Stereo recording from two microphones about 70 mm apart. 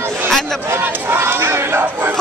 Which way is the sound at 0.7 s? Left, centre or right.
Right.